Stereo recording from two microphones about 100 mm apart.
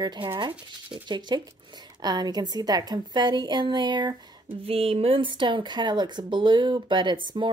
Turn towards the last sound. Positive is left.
turn(degrees=-50)  # may be behind; listen again after turning